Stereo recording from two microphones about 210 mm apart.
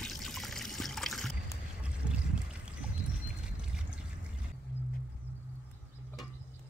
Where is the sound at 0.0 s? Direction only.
Centre (ahead or behind).